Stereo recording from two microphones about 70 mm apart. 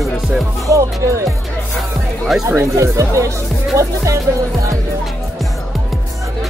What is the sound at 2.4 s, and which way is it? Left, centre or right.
Speech, right.